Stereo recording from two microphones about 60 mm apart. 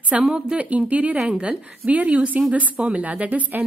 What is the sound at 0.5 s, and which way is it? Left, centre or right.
A woman's voice, right.